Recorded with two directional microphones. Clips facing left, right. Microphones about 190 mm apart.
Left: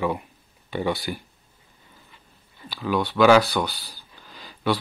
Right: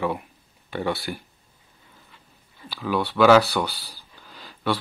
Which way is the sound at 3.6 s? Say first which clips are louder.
Even; 15° left (ahead or behind).